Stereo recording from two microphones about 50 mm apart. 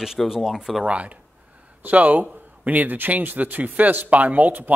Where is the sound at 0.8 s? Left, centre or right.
Right.